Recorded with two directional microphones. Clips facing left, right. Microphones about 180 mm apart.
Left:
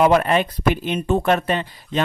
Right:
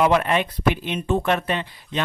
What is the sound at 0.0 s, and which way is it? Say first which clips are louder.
Speech: left 3 dB; 40° left (ahead or behind).